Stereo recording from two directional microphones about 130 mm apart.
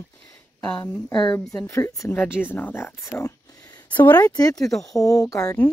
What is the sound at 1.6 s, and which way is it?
Speech, 25° left (ahead or behind).